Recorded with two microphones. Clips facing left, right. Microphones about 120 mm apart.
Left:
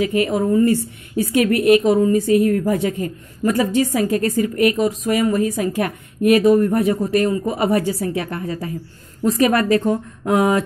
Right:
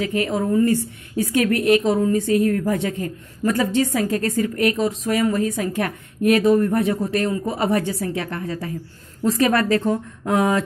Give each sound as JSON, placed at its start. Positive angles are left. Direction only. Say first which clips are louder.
{"t": 0.0, "sound": "a woman's voice", "louder": "left 4 dB", "side_deg": 15}